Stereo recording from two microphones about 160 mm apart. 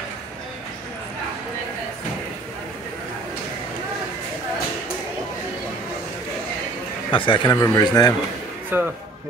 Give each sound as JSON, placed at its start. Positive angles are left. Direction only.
{"t": 7.1, "sound": "a man's voice", "side_deg": 30}
{"t": 8.7, "sound": "speech", "side_deg": -15}